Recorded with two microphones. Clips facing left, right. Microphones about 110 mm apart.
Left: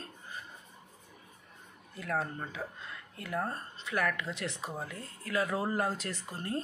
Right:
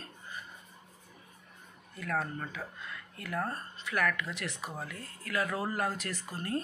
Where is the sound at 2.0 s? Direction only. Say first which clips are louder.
Even; 25° left (ahead or behind).